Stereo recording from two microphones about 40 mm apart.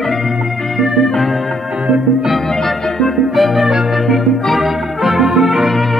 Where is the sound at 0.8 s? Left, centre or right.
Centre.